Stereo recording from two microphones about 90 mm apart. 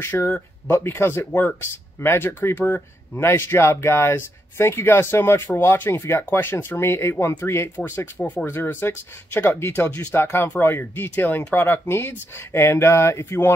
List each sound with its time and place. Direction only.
0.0 s speech: 25° left (ahead or behind)